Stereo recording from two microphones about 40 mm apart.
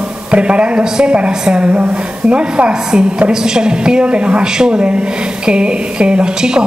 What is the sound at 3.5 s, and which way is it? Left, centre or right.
A woman's voice, centre.